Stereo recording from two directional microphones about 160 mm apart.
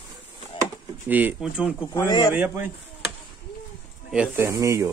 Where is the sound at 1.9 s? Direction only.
20° left (ahead or behind).